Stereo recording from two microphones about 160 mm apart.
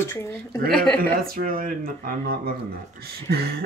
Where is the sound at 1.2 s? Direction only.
65° right (ahead or behind).